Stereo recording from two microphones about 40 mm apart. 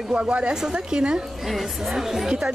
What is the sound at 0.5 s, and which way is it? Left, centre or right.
Speech, centre.